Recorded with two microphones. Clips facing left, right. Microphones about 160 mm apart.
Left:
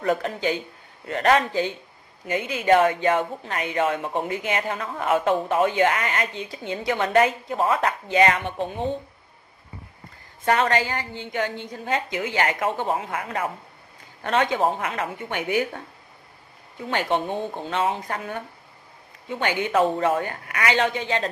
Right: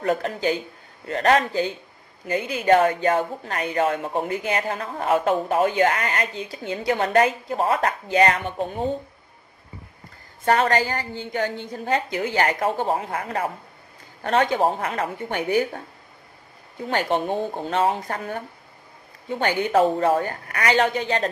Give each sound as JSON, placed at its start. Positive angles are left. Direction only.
{"t": 0.0, "sound": "a woman's voice", "side_deg": -35}
{"t": 10.4, "sound": "a woman's voice", "side_deg": -35}
{"t": 16.9, "sound": "a woman's voice", "side_deg": -40}